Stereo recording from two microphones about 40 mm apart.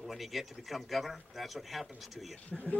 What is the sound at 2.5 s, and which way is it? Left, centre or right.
Speech, left.